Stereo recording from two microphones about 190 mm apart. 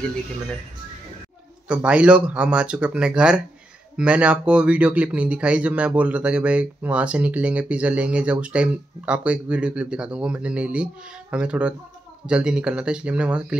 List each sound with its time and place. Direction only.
1.7 s speech: 5° right (ahead or behind)